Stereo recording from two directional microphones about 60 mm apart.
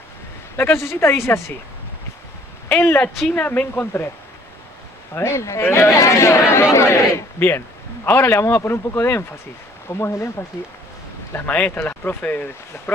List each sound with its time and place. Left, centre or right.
0.6 s a man's voice: left
2.8 s speech: left
3.3 s speech: left
5.1 s a man's voice: left
5.9 s a man's voice: left
7.3 s speech: left
8.3 s a man's voice: left
11.3 s speech: left